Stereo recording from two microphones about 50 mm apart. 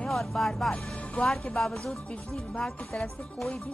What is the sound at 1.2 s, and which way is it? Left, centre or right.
Speech, left.